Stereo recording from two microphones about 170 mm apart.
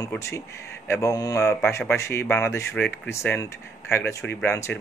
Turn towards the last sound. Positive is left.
turn(degrees=15)  # may be behind; listen again after turning